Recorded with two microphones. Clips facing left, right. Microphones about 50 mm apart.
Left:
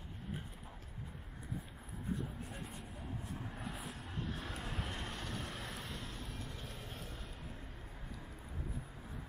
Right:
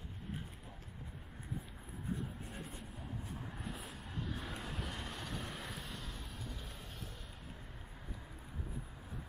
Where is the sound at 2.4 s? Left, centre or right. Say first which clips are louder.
Even; centre.